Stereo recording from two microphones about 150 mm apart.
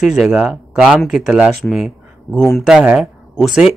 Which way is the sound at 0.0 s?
5° right (ahead or behind).